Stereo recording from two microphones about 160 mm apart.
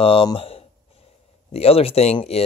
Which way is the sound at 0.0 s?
35° left (ahead or behind).